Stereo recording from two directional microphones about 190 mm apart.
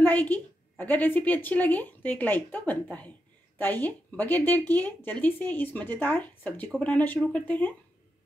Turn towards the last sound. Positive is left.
turn(degrees=10)  # may be behind; listen again after turning